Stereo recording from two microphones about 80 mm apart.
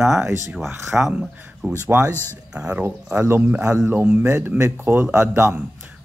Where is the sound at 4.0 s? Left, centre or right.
Right.